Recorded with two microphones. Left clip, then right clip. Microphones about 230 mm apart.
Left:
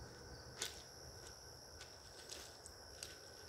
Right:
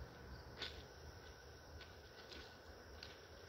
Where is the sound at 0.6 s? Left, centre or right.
Left.